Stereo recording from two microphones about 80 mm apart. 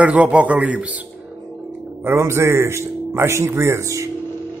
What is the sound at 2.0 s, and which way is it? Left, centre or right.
A man's voice, right.